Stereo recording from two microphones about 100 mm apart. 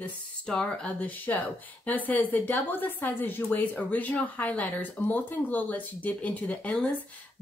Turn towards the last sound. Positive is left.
turn(degrees=15)  # may be behind; listen again after turning